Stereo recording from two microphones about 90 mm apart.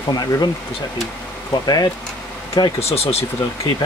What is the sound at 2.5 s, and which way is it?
Speech, 75° left (ahead or behind).